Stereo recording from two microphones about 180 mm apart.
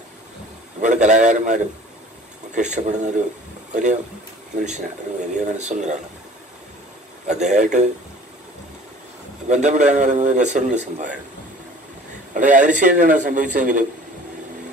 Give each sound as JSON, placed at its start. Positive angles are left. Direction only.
{"t": 0.7, "sound": "a man's voice", "side_deg": -40}
{"t": 4.6, "sound": "a man's voice", "side_deg": -40}
{"t": 7.2, "sound": "a man's voice", "side_deg": -40}
{"t": 9.5, "sound": "a man's voice", "side_deg": -40}
{"t": 12.4, "sound": "a man's voice", "side_deg": -45}